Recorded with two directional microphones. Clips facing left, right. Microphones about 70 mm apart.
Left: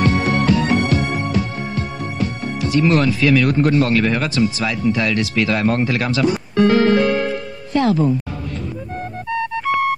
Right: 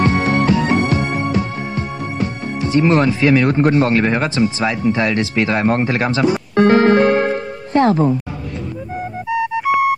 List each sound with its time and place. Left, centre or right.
0.0 s music: right
6.5 s music: right
8.9 s music: centre